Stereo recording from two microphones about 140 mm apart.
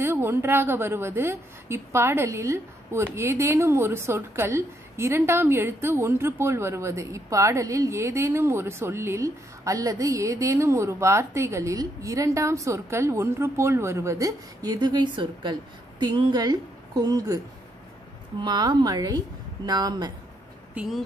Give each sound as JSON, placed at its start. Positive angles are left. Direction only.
{"t": 0.0, "sound": "a woman's voice", "side_deg": -15}
{"t": 18.4, "sound": "a woman's voice", "side_deg": -30}
{"t": 20.7, "sound": "speech", "side_deg": -5}